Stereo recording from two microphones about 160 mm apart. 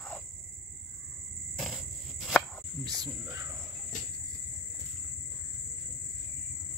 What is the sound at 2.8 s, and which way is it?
Cricket, 25° right (ahead or behind).